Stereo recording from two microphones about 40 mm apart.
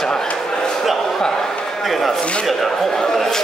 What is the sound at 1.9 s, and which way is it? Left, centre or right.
Speech, centre.